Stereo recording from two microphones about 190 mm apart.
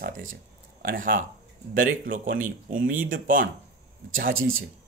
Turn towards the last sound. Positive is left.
turn(degrees=-90)